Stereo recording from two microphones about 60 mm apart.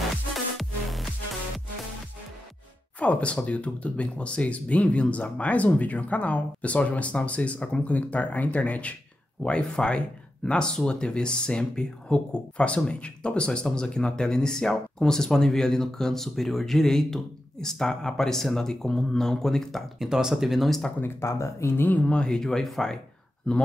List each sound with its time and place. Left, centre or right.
3.0 s speech: left; by 20.1 s centre
20.1 s speech: centre
21.0 s speech: left
21.7 s speech: left
22.2 s speech: centre